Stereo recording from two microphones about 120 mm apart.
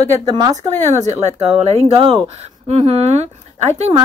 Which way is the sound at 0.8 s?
75° right (ahead or behind).